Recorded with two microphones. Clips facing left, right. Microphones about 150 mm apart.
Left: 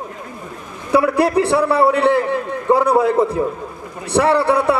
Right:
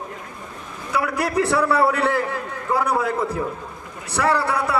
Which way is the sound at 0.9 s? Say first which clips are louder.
Left 8 dB; 30° left (ahead or behind).